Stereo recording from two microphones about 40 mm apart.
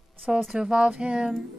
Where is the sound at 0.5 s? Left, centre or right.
Right.